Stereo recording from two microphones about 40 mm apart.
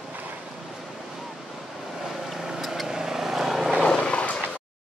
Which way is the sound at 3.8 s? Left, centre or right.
Left.